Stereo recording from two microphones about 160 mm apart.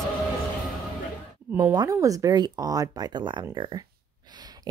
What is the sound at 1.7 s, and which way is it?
Speech, 20° right (ahead or behind).